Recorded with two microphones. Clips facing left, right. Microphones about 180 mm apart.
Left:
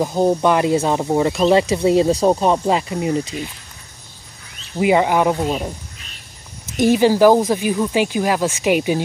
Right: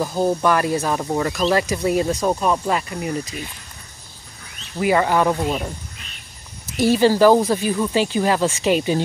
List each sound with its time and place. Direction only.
0.0 s speech: 20° left (ahead or behind)
4.7 s speech: 15° left (ahead or behind)
6.8 s speech: 15° left (ahead or behind)